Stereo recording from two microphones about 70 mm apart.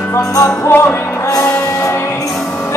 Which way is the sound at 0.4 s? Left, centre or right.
Left.